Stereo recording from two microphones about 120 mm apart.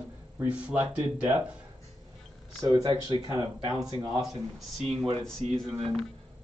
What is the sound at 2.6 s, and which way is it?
Speech, 35° right (ahead or behind).